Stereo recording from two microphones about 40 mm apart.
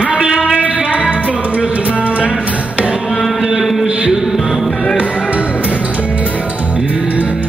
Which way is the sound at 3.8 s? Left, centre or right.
Right.